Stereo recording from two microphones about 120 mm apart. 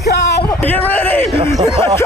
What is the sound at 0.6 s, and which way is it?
Speech, 15° left (ahead or behind).